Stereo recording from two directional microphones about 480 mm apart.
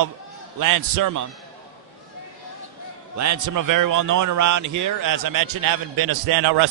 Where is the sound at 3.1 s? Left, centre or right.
Right.